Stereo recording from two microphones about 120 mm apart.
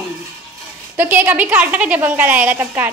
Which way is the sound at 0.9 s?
15° right (ahead or behind).